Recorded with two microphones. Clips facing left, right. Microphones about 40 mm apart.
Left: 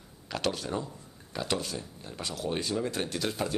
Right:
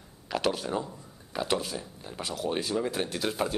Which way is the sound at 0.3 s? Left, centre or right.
Centre.